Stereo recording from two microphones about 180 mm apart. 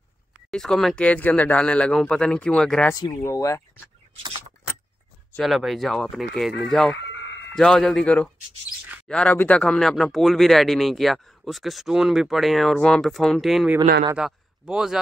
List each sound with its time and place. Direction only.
0.5 s speech: 5° left (ahead or behind)
2.9 s speech: 20° left (ahead or behind)
5.3 s a man's voice: centre (ahead or behind)